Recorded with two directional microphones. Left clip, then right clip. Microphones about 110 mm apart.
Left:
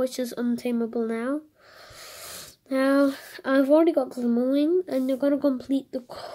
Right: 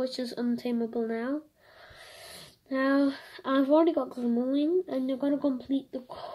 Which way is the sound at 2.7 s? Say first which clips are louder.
Left 5 dB; 30° left (ahead or behind).